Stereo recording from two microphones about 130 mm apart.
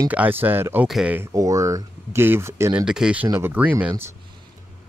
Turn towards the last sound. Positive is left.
turn(degrees=-15)  # may be behind; listen again after turning